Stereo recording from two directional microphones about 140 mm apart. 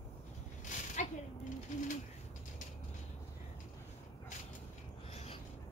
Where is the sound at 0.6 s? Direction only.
60° left (ahead or behind).